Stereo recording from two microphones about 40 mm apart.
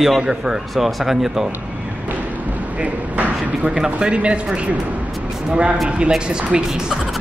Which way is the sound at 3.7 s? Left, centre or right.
Centre.